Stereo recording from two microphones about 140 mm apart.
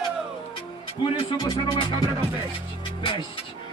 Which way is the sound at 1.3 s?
30° left (ahead or behind).